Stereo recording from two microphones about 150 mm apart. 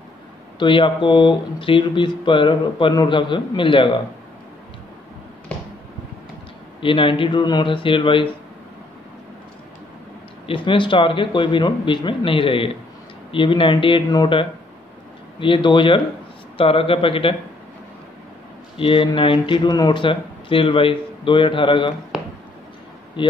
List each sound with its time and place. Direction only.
0.6 s speech: 35° left (ahead or behind)
6.8 s speech: 35° left (ahead or behind)
10.4 s speech: 35° left (ahead or behind)
18.8 s speech: 35° left (ahead or behind)
23.2 s speech: 35° left (ahead or behind)